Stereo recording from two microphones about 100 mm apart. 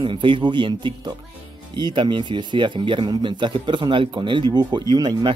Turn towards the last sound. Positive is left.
turn(degrees=-45)  # may be behind; listen again after turning